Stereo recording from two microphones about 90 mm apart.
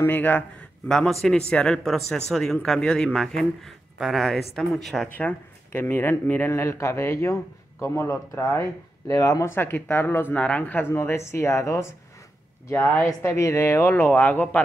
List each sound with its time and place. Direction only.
0.0 s speech: 20° left (ahead or behind); by 5.0 s 5° left (ahead or behind)
5.0 s speech: 15° left (ahead or behind)
9.0 s speech: 40° left (ahead or behind)
13.0 s speech: 30° left (ahead or behind)